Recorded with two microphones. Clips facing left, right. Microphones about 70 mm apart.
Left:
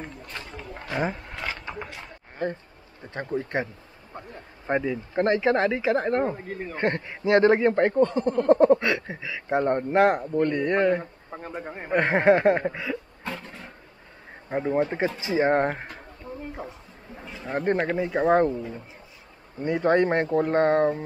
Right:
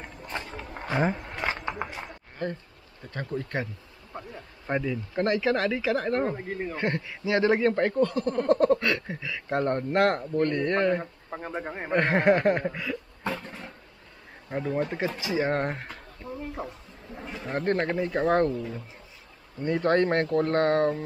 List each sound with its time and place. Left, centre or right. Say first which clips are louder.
0.3 s a sound: right 2 dB; right
1.1 s a sound: right 3 dB; centre
3.0 s speech: left 3 dB; left
4.1 s vehicle: right 1 dB; centre
4.6 s a man's voice: left 3 dB; left
7.5 s speech: left 3 dB; left
11.0 s a man's voice: right 1 dB; centre
11.9 s speech: left 2 dB; centre
14.5 s speech: left 4 dB; left
16.5 s a sound: right 1 dB; centre
17.5 s speech: left 2 dB; centre